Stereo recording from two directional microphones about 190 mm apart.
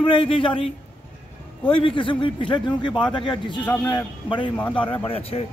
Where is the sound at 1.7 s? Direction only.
25° left (ahead or behind).